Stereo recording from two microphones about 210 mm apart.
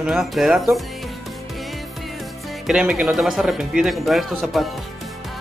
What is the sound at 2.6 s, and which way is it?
Speech, 5° right (ahead or behind).